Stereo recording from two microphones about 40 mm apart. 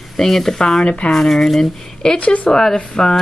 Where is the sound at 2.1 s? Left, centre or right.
Left.